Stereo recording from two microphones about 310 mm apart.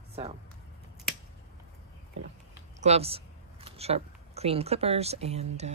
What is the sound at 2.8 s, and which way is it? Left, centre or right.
Speech, centre.